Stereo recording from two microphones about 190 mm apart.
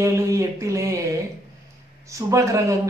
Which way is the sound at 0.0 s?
15° right (ahead or behind).